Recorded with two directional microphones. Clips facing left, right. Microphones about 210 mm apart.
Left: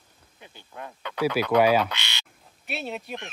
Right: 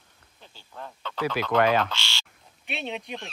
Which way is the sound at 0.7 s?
10° left (ahead or behind).